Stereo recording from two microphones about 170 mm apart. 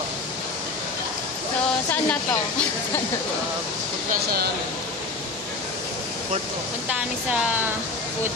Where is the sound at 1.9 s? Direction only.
10° left (ahead or behind).